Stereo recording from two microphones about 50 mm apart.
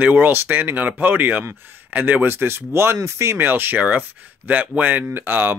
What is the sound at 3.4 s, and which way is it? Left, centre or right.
Speech, right.